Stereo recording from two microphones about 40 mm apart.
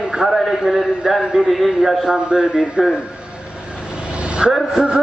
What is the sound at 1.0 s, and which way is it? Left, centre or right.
Speech, right.